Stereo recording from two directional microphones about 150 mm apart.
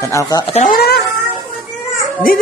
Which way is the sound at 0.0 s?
20° left (ahead or behind).